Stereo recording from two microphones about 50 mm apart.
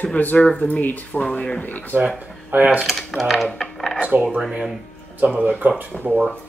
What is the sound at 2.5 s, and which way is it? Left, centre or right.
Speech, right.